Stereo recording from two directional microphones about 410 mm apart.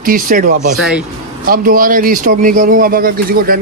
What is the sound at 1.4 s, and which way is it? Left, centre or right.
Speech, right.